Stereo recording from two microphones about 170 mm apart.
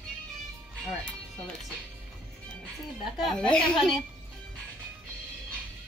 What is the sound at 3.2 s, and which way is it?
Speech, 5° left (ahead or behind).